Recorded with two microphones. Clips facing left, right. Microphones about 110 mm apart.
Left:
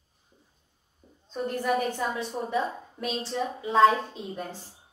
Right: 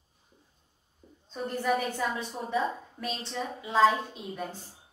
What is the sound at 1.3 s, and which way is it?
A woman's voice, centre (ahead or behind).